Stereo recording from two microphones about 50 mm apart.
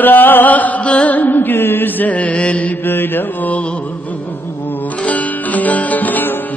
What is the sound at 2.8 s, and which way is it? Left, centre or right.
Mantra, left.